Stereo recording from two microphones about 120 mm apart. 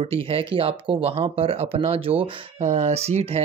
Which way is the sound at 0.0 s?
55° right (ahead or behind).